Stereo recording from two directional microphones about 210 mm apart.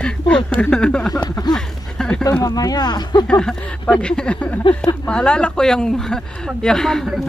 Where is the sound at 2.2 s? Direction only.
15° left (ahead or behind).